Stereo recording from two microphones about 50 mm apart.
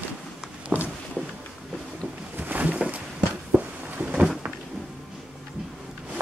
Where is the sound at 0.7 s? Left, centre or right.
Right.